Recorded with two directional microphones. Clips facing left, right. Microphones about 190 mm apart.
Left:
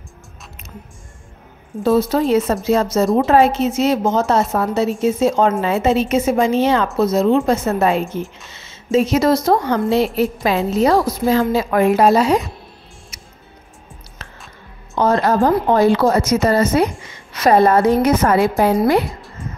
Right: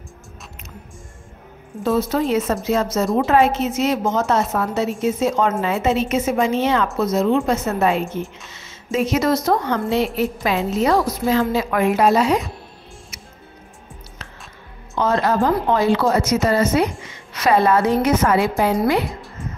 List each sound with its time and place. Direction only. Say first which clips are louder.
1.8 s a woman's voice: left 4 dB; 35° left (ahead or behind)
15.0 s a woman's voice: left 3 dB; 40° left (ahead or behind)